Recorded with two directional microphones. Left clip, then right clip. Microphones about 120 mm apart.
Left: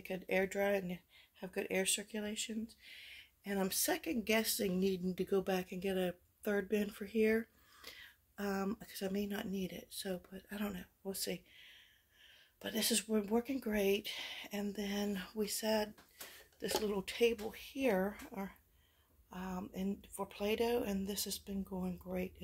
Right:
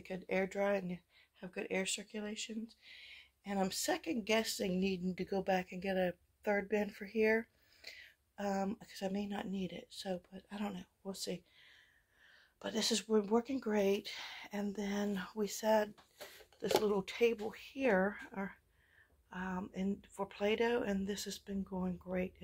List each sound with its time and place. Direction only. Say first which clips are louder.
0.0 s speech: left 1 dB; 30° left (ahead or behind)
12.5 s speech: right 1 dB; 10° left (ahead or behind)